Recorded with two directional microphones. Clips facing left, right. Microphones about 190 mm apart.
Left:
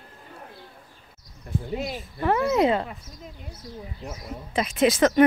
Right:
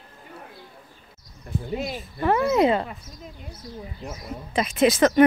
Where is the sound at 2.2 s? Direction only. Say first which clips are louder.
Right 1 dB; 20° right (ahead or behind).